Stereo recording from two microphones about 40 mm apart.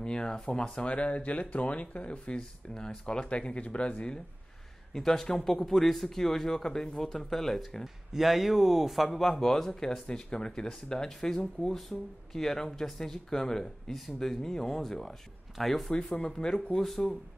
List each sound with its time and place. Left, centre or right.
0.0 s speech: left
4.9 s speech: centre
7.8 s speech: centre
13.9 s speech: centre
14.3 s speech: centre
16.1 s speech: centre